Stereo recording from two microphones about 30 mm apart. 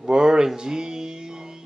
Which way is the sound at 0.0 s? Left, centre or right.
Right.